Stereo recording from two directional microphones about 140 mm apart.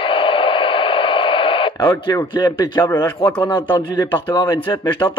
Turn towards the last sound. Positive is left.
turn(degrees=35)  # may be behind; listen again after turning